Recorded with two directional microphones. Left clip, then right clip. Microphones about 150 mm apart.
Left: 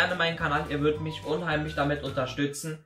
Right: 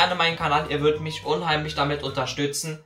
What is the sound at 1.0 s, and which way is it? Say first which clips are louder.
Speech: right 6 dB; 35° right (ahead or behind).